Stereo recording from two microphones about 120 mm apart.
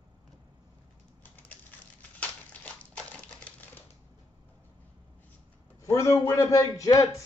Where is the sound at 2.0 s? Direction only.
10° left (ahead or behind).